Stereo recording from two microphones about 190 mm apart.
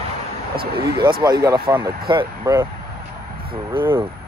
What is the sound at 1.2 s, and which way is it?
Speech, 20° right (ahead or behind).